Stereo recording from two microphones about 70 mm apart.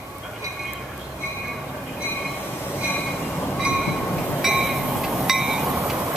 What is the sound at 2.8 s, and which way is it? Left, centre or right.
Train, left.